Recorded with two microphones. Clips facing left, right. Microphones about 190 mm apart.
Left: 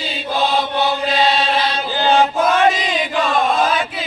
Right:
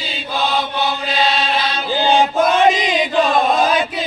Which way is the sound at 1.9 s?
15° right (ahead or behind).